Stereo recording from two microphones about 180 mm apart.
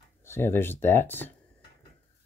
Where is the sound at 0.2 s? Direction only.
15° left (ahead or behind).